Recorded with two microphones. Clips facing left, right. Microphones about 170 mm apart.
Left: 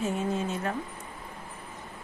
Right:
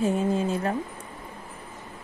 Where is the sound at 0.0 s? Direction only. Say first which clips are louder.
Right 5 dB; 35° right (ahead or behind).